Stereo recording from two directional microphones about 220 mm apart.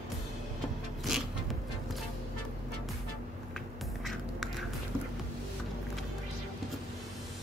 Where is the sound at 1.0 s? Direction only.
Centre (ahead or behind).